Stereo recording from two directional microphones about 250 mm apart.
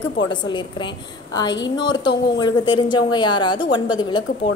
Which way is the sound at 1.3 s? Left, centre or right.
Centre.